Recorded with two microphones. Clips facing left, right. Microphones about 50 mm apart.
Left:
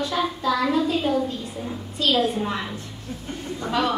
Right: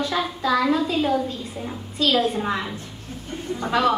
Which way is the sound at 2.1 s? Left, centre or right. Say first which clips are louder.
Even; right.